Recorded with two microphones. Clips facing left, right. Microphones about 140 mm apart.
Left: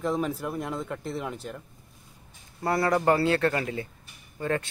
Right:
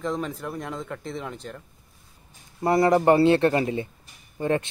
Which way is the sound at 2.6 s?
20° right (ahead or behind).